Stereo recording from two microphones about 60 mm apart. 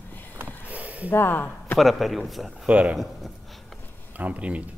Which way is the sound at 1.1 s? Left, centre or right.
Left.